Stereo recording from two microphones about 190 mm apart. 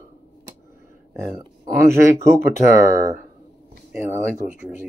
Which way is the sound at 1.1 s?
20° right (ahead or behind).